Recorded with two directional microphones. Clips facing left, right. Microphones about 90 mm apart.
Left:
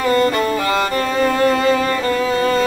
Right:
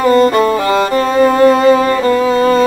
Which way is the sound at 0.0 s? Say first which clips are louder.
Right 6 dB; 30° right (ahead or behind).